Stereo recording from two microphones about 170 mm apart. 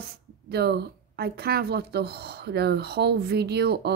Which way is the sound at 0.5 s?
70° right (ahead or behind).